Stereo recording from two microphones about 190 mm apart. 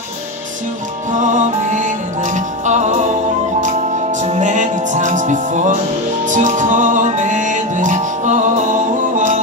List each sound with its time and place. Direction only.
1.3 s music: 40° right (ahead or behind)